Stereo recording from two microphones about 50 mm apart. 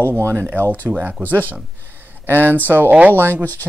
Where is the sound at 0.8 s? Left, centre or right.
Right.